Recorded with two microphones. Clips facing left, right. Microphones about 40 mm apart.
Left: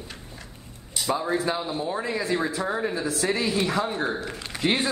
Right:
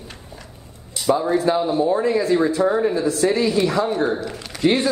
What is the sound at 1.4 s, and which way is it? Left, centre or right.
A woman's voice, centre.